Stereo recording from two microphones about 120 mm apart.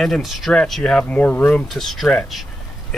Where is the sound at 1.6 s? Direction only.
Centre (ahead or behind).